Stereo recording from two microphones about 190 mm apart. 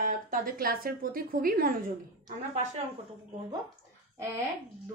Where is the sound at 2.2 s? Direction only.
35° right (ahead or behind).